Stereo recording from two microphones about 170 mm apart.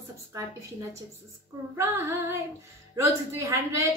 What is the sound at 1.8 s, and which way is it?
A woman's voice, 15° right (ahead or behind).